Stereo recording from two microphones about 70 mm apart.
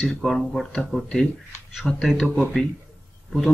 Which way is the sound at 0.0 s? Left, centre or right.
Centre.